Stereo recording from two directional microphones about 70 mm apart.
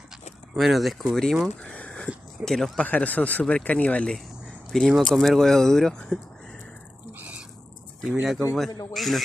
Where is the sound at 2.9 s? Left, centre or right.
Centre.